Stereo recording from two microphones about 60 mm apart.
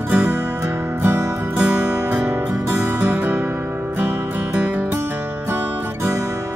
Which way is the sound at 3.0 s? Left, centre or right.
Right.